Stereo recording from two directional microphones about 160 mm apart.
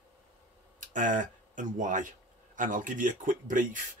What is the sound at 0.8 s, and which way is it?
Speech, 50° right (ahead or behind).